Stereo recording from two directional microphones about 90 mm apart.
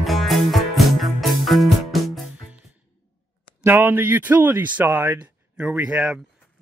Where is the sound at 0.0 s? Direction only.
Centre (ahead or behind).